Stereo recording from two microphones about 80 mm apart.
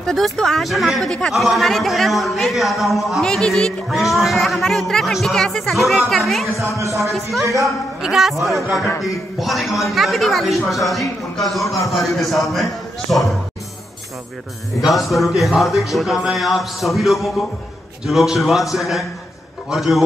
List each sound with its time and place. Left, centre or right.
0.0 s a man's voice: centre
6.6 s speech: right
7.0 s a man's voice: centre
7.4 s speech: right
8.0 s a man's voice: centre
14.8 s a man's voice: centre